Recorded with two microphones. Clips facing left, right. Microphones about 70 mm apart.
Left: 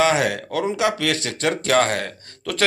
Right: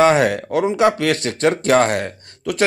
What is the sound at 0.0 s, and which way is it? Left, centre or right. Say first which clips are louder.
A man's voice: right 5 dB; right.